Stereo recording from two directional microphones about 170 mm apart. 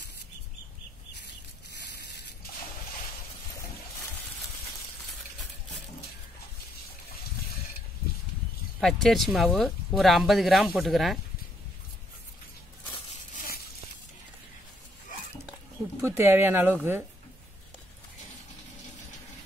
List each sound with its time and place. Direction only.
8.8 s speech: centre (ahead or behind)
16.0 s speech: 15° right (ahead or behind)